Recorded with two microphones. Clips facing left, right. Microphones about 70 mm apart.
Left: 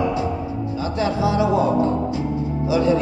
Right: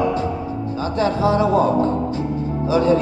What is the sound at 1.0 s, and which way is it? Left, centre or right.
Speech, right.